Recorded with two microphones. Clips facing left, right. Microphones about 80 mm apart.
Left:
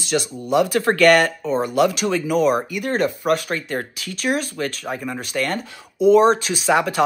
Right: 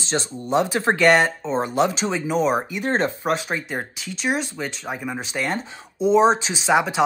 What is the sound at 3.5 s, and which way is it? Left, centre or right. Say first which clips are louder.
Speech: left 2 dB; centre.